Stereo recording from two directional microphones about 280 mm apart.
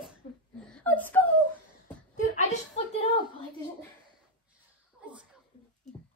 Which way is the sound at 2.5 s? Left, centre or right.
Left.